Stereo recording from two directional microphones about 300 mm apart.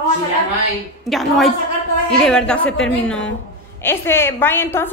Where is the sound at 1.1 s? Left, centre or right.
Centre.